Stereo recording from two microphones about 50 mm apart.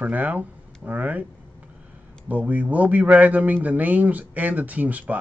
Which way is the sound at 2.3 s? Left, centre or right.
Right.